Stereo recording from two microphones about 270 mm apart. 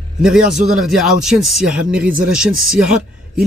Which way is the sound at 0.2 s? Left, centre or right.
Centre.